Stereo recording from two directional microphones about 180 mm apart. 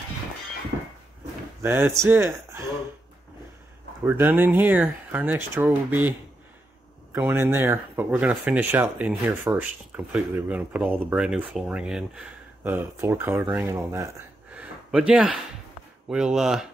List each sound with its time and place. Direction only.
1.6 s speech: 15° right (ahead or behind)
4.0 s speech: 10° right (ahead or behind)
7.1 s speech: 15° right (ahead or behind)